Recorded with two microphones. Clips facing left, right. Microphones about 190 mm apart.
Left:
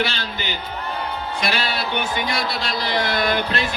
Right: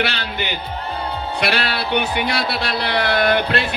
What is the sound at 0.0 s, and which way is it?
Speech, 65° right (ahead or behind).